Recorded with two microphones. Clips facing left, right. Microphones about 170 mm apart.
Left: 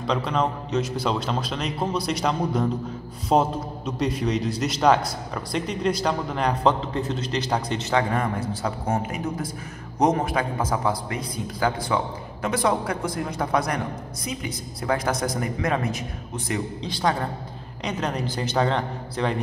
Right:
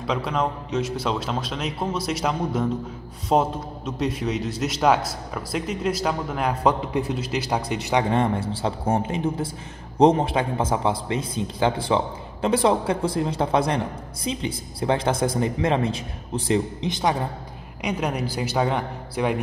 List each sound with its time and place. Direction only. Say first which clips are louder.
0.0 s a man's voice: left 1 dB; 5° right (ahead or behind)
8.1 s a man's voice: right 3 dB; 25° right (ahead or behind); by 19.3 s 10° right (ahead or behind)